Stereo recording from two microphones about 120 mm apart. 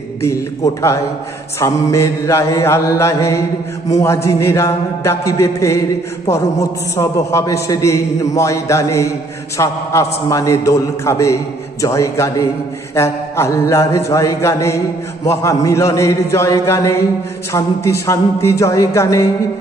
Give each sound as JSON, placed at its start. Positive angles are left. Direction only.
{"t": 1.6, "sound": "a man's voice", "side_deg": 25}
{"t": 7.0, "sound": "a man's voice", "side_deg": 25}